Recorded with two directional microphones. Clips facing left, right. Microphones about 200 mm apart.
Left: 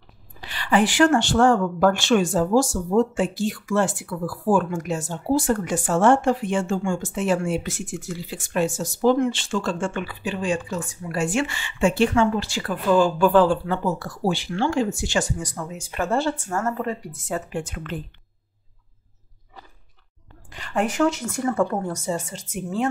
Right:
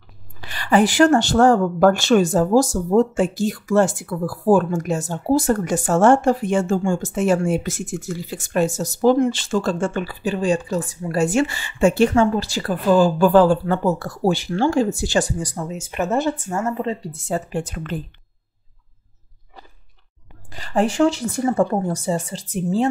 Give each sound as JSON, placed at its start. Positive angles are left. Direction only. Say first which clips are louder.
{"t": 0.4, "sound": "speech", "louder": "right 3 dB", "side_deg": -45}
{"t": 20.5, "sound": "speech", "louder": "right 4 dB", "side_deg": -35}